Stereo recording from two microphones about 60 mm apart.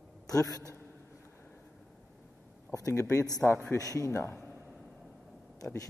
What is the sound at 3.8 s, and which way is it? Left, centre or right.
Speech, left.